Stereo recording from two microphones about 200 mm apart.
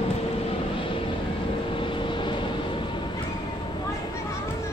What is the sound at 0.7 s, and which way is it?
Vehicle, 25° left (ahead or behind).